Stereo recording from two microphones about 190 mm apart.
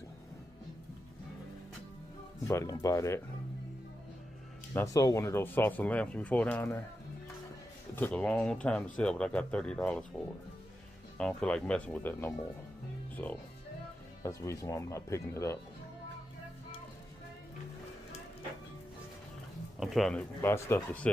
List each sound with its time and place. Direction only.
2.4 s speech: 15° left (ahead or behind)
4.7 s speech: 15° left (ahead or behind)
7.9 s speech: 5° left (ahead or behind)
11.1 s speech: 5° left (ahead or behind)
19.8 s speech: centre (ahead or behind)